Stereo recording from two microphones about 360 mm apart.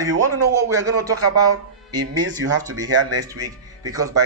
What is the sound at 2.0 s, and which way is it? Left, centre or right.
Speech, right.